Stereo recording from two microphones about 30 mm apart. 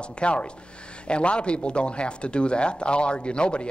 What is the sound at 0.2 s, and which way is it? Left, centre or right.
Speech, left.